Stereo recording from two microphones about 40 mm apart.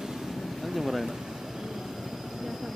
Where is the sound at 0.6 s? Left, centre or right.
Centre.